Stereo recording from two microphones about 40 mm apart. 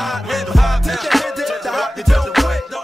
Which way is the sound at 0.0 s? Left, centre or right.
Centre.